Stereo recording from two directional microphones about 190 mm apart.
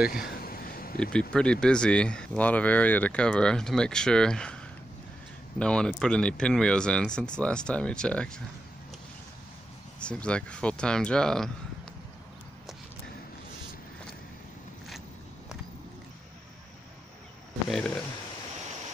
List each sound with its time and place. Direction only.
0.4 s a sound: 50° left (ahead or behind)
1.3 s speech: 5° left (ahead or behind)
5.6 s speech: 5° left (ahead or behind)
9.9 s speech: 5° left (ahead or behind)
17.6 s speech: centre (ahead or behind)